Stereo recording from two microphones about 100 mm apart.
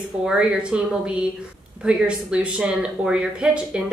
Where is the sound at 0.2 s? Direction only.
10° right (ahead or behind).